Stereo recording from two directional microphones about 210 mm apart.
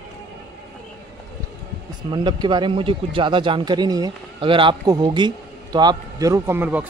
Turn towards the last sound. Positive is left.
turn(degrees=-10)  # may be behind; listen again after turning